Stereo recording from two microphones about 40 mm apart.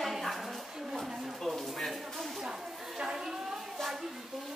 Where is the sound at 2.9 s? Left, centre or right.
Centre.